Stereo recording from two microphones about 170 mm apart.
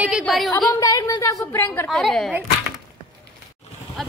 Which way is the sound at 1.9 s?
Centre (ahead or behind).